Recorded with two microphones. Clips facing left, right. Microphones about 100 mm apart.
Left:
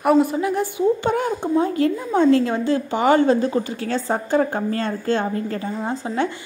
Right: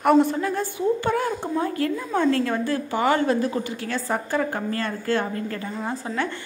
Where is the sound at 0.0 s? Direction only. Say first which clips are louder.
Left 1 dB; 5° left (ahead or behind).